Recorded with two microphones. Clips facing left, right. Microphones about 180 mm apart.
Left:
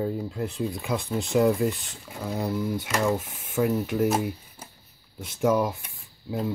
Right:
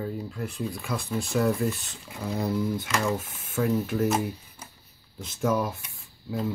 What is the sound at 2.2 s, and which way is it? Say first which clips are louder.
Speech: even; 5° left (ahead or behind).